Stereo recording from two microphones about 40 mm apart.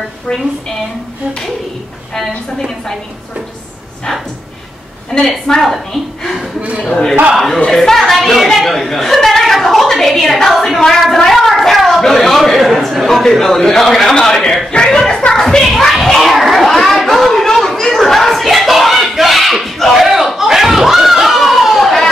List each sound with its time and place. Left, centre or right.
5.1 s a woman's voice: centre
6.8 s a man's voice: centre
7.3 s a woman's voice: centre
10.5 s a sound: centre
12.5 s a man's voice: centre
15.3 s children playing: centre